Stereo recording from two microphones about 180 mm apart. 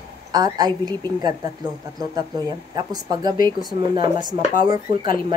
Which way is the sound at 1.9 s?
20° right (ahead or behind).